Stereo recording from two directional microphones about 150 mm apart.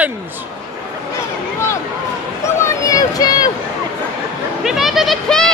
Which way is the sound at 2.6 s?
25° left (ahead or behind).